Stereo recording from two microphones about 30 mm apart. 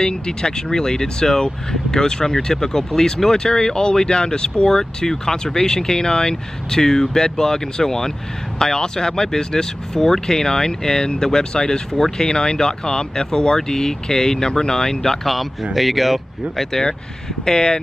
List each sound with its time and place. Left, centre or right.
0.0 s speech: left
4.6 s speech: centre
15.7 s speech: centre
16.7 s speech: centre
17.5 s speech: left